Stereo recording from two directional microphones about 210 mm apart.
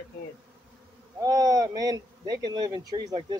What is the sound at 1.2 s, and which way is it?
Speech, 15° right (ahead or behind).